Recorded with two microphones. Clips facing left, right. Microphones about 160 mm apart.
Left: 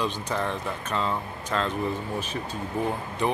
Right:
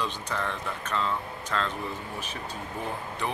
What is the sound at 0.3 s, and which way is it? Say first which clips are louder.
Speech: left 4 dB; 20° left (ahead or behind).